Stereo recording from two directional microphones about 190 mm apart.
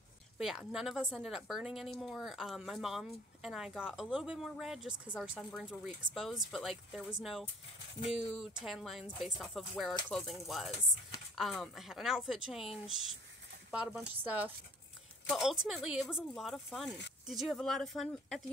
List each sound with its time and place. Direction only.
0.4 s speech: 5° right (ahead or behind)